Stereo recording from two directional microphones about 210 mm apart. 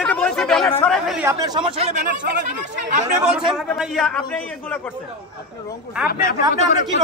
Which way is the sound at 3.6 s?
Centre (ahead or behind).